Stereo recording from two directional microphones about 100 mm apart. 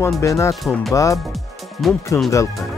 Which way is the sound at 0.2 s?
30° left (ahead or behind).